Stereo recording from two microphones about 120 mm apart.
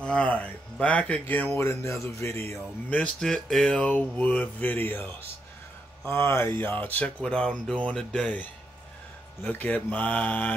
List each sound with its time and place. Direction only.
0.0 s speech: 10° left (ahead or behind)
2.9 s speech: 5° left (ahead or behind)